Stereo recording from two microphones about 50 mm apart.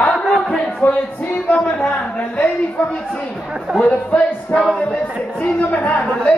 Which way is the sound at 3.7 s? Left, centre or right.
Centre.